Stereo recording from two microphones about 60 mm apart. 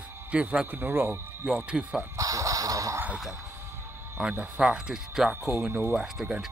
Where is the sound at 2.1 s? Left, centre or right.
Right.